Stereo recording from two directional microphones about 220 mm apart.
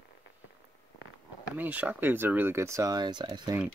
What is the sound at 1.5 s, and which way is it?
Speech, 5° right (ahead or behind).